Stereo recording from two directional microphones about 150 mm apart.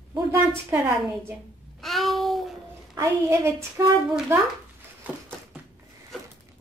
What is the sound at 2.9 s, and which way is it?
A woman's voice, 20° right (ahead or behind).